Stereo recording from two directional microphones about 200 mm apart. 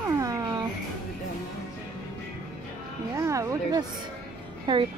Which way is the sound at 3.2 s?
15° right (ahead or behind).